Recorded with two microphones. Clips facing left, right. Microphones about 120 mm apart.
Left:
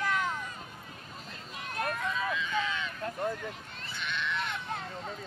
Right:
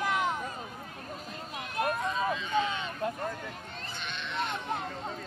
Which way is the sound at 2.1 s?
35° right (ahead or behind).